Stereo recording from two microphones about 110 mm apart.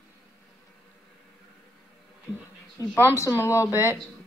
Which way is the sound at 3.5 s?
25° left (ahead or behind).